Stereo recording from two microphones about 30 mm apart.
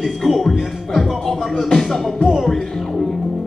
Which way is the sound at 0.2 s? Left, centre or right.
Centre.